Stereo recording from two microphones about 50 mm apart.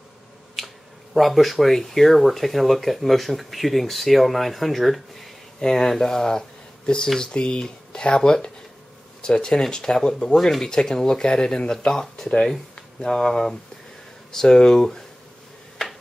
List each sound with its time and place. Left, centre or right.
0.6 s finger snapping: centre
1.1 s speech: centre